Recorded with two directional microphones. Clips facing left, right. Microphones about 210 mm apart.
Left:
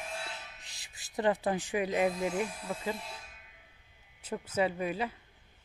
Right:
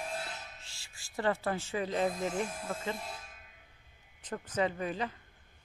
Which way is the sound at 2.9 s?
50° right (ahead or behind).